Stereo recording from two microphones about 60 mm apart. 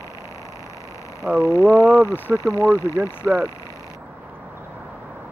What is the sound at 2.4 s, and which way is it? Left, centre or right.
Speech, left.